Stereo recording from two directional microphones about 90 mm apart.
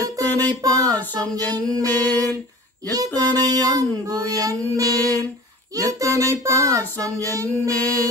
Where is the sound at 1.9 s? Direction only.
20° left (ahead or behind).